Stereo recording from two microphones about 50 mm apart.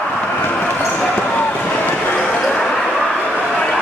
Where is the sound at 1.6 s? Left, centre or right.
Left.